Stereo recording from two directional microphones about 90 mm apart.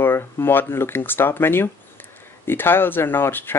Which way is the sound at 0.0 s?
25° left (ahead or behind).